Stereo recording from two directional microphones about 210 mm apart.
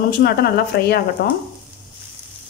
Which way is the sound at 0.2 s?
50° left (ahead or behind).